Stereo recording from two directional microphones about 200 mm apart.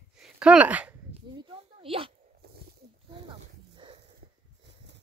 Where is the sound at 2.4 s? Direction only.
50° right (ahead or behind).